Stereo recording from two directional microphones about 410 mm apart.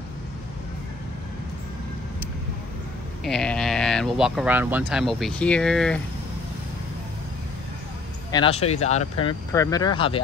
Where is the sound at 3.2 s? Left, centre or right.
Centre.